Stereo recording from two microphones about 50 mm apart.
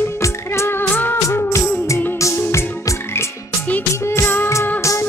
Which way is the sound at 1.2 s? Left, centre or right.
Left.